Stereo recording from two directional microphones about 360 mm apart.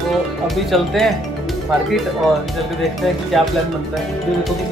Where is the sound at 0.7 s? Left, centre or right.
Centre.